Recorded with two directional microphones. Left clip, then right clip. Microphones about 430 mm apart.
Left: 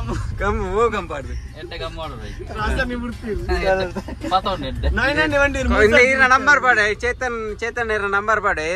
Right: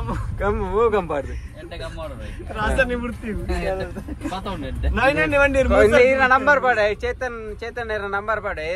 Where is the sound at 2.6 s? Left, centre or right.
Centre.